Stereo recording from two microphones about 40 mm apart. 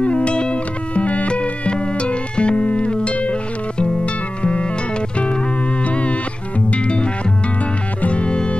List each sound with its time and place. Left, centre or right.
0.0 s music: left
6.7 s music: left